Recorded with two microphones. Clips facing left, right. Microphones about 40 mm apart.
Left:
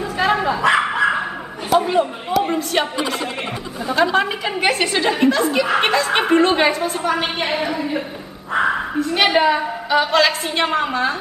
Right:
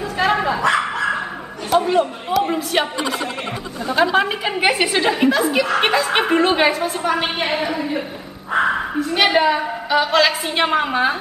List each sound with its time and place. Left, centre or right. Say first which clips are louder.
0.2 s bow-wow: even; centre
0.6 s dog: left 2 dB; centre
1.7 s a sound: even; centre
3.8 s a woman's voice: even; centre